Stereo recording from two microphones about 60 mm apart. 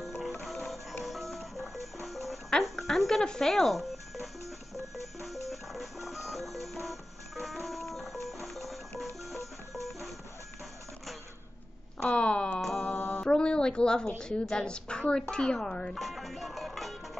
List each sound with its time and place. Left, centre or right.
0.0 s music: centre
2.6 s speech: centre
4.9 s music: centre
9.8 s music: centre
12.1 s a sound: centre
12.6 s mantra: centre
12.9 s mantra: left
13.2 s a sound: centre
14.4 s a woman's voice: centre
15.9 s music: centre